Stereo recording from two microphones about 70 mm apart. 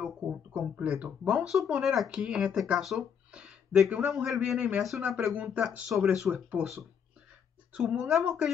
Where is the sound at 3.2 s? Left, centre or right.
Centre.